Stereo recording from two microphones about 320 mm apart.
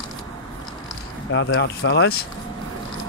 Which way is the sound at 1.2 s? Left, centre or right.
Left.